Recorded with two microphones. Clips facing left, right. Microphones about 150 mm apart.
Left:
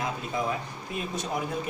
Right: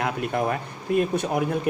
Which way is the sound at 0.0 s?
65° right (ahead or behind).